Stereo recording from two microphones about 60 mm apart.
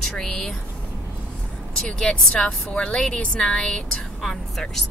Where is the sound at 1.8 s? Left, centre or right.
Centre.